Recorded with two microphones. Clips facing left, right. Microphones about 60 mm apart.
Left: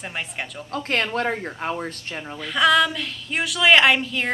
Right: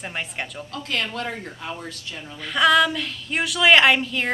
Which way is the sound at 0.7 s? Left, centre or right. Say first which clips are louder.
Left 4 dB; left.